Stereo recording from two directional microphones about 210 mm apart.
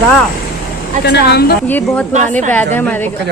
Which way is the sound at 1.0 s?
50° left (ahead or behind).